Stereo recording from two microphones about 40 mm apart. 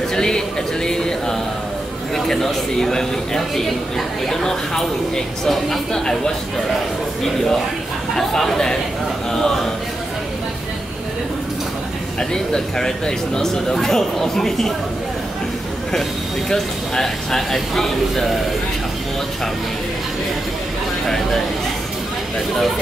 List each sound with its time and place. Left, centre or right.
0.1 s speech: centre
0.8 s a sound: centre
2.1 s speech: centre
8.2 s speech: centre
12.2 s speech: centre
15.9 s speech: centre